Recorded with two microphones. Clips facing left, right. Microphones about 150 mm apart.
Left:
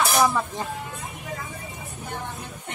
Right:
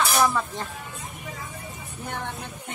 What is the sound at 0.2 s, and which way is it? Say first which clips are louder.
Speech: left 1 dB; 10° left (ahead or behind).